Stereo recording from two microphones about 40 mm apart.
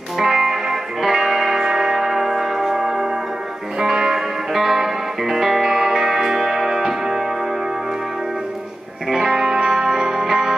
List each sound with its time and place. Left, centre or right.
0.2 s music: centre
9.1 s music: centre